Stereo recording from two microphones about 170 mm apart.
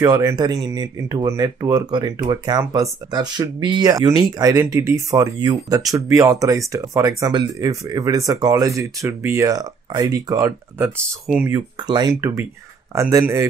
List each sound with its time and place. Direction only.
0.0 s speech: 15° right (ahead or behind)